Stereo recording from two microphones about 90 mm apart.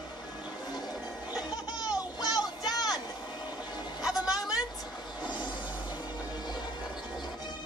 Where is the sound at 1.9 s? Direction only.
45° left (ahead or behind).